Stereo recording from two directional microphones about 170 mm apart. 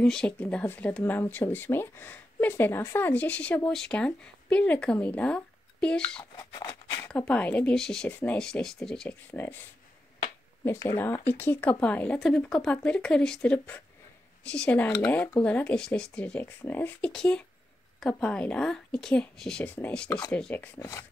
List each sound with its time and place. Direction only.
0.0 s speech: 5° left (ahead or behind)
6.3 s a sound: 20° left (ahead or behind)
7.1 s speech: 5° left (ahead or behind)
10.6 s speech: 15° left (ahead or behind)